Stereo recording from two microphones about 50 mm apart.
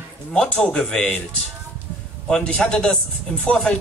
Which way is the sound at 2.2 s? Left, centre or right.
Centre.